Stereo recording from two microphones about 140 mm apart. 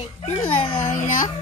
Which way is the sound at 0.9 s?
70° left (ahead or behind).